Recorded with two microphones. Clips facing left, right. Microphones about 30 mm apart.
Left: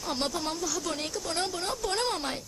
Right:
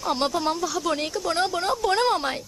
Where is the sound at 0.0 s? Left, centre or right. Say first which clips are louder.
Right 7 dB; right.